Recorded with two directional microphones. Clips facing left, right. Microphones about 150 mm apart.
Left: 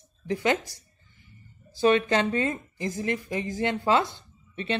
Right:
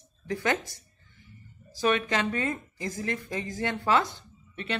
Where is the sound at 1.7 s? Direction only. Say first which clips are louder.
Left 5 dB; 25° left (ahead or behind).